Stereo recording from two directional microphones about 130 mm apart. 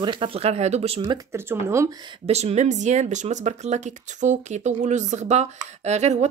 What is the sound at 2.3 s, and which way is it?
Speech, 55° right (ahead or behind).